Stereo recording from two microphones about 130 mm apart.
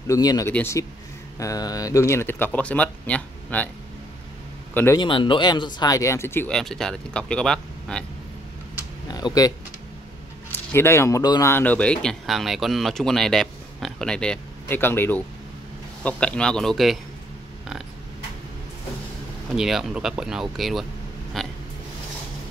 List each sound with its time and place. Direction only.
0.0 s speech: 25° left (ahead or behind)
4.9 s speech: 40° left (ahead or behind); by 6.5 s 20° left (ahead or behind)
6.5 s speech: 5° left (ahead or behind)
9.0 s speech: 30° left (ahead or behind)
10.7 s speech: 20° left (ahead or behind)
11.5 s speech: 10° left (ahead or behind)
19.5 s speech: 5° right (ahead or behind)
21.4 s a sound: centre (ahead or behind)